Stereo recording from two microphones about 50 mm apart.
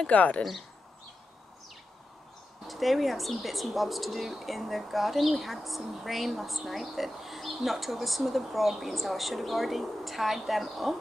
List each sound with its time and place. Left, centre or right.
0.0 s speech: left
2.6 s a woman's voice: centre